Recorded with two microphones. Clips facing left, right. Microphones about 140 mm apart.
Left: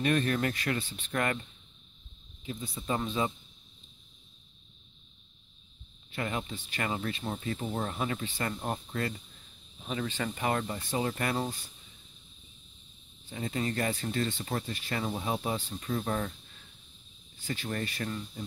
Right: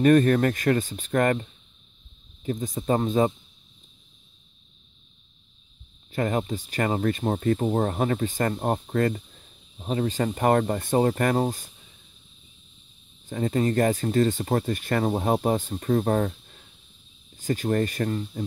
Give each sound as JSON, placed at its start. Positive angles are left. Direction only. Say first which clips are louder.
{"t": 0.0, "sound": "speech", "louder": "right 10 dB", "side_deg": -45}
{"t": 6.1, "sound": "speech", "louder": "right 9 dB", "side_deg": -40}
{"t": 13.3, "sound": "speech", "louder": "right 9 dB", "side_deg": -45}
{"t": 17.4, "sound": "speech", "louder": "right 11 dB", "side_deg": -45}